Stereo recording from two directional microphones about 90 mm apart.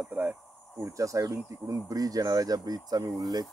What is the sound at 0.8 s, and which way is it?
Speech, 35° right (ahead or behind).